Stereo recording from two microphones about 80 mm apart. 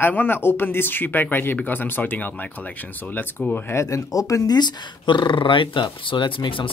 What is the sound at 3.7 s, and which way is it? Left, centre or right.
Speech, left.